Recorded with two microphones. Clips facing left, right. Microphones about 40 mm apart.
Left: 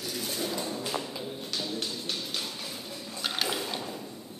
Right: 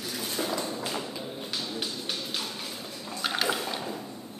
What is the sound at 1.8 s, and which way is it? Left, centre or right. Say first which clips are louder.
Music: right 1 dB; centre.